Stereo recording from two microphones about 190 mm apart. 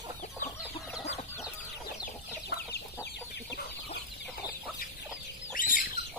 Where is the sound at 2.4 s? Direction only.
55° left (ahead or behind).